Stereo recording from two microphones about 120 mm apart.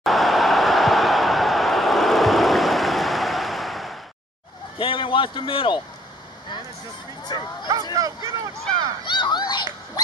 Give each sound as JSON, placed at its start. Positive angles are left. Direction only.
{"t": 0.0, "sound": "a sound", "side_deg": 0}
{"t": 4.7, "sound": "a man's voice", "side_deg": 45}
{"t": 7.3, "sound": "speech", "side_deg": 40}
{"t": 7.9, "sound": "speech", "side_deg": -25}
{"t": 9.0, "sound": "speech", "side_deg": 40}